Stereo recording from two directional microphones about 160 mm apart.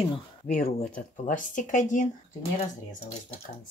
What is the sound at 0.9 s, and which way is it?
Speech, 55° left (ahead or behind).